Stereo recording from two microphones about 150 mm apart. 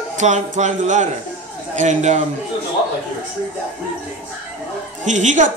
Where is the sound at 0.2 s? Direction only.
55° right (ahead or behind).